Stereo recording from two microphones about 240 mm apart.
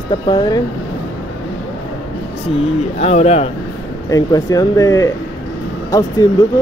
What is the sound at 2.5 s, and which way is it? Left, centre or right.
Speech, left.